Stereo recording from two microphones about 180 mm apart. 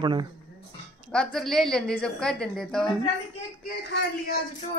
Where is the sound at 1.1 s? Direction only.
5° left (ahead or behind).